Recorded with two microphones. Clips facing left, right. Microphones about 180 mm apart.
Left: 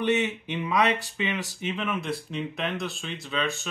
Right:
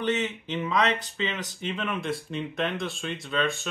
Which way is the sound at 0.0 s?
10° left (ahead or behind).